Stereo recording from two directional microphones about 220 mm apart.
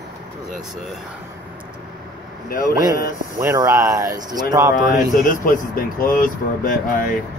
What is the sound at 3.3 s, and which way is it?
Speech, 15° right (ahead or behind).